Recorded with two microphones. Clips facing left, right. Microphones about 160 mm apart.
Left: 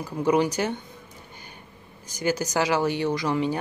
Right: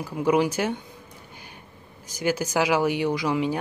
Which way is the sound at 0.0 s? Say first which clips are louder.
Even; 5° right (ahead or behind).